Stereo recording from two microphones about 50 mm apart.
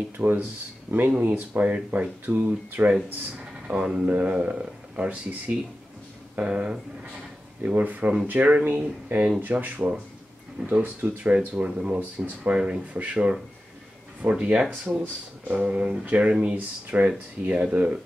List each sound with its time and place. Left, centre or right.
0.2 s speech: right
1.2 s speech: right
1.9 s speech: right
16.5 s speech: right